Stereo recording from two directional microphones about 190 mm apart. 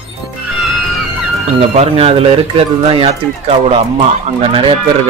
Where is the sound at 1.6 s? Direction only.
35° right (ahead or behind).